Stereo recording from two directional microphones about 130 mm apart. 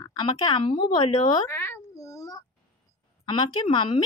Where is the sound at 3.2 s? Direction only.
35° left (ahead or behind).